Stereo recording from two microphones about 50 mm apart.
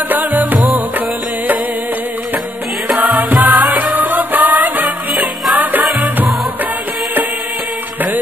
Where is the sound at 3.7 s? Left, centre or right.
Right.